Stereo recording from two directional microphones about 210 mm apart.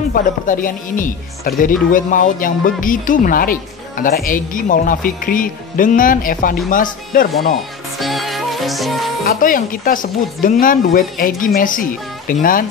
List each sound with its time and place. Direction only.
0.1 s speech: 40° left (ahead or behind)
8.0 s music: centre (ahead or behind)
9.2 s speech: 40° left (ahead or behind)